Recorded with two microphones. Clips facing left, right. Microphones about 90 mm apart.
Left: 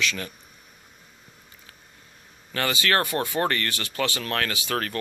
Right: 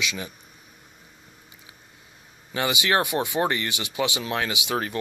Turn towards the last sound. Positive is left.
turn(degrees=-15)  # may be behind; listen again after turning